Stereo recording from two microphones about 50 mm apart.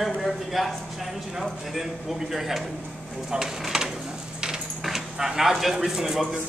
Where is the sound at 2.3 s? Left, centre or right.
Centre.